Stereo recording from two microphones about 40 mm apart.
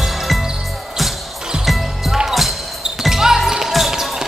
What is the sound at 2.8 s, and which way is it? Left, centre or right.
Basketball bounce, centre.